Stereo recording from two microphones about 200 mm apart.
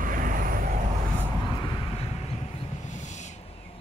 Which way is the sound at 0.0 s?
45° right (ahead or behind).